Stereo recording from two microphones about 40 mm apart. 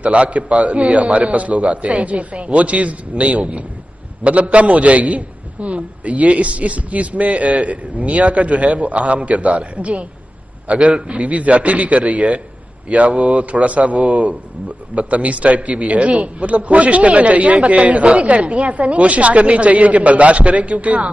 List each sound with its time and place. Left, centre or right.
0.0 s a man's voice: right